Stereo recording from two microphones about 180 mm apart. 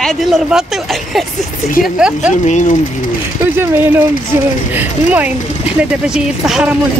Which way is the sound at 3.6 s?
10° right (ahead or behind).